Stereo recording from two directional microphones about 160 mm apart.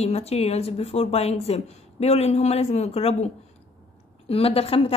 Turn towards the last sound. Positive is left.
turn(degrees=35)  # may be behind; listen again after turning